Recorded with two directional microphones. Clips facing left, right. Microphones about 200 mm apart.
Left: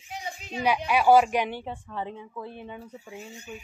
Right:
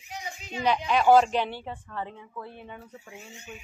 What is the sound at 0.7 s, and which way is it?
A woman's voice, 10° left (ahead or behind).